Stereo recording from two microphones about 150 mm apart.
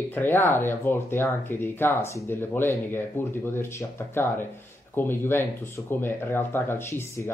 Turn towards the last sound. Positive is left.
turn(degrees=15)  # may be behind; listen again after turning